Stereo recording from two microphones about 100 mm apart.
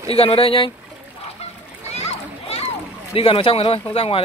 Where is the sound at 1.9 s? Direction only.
90° left.